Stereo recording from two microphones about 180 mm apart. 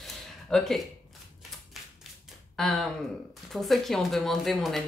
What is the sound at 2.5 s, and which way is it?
Speech, centre (ahead or behind).